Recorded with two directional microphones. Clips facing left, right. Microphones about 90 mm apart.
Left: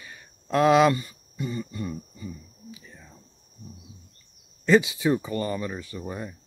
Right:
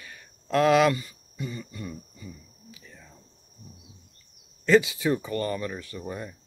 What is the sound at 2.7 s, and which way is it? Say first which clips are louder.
Whispering: left 3 dB; 20° left (ahead or behind).